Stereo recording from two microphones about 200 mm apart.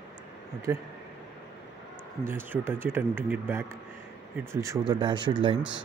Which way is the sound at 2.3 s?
10° right (ahead or behind).